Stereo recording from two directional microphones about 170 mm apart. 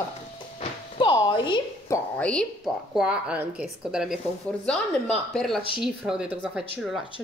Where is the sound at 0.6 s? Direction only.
30° left (ahead or behind).